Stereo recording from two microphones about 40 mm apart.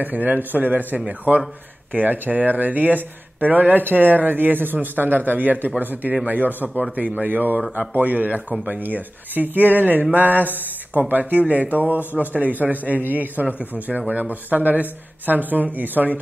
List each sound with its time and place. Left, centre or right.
0.0 s speech: right
6.8 s speech: right